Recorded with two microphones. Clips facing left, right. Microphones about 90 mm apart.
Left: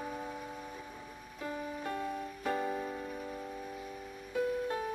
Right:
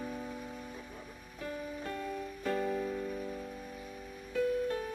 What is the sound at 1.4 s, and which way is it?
Music, 25° left (ahead or behind).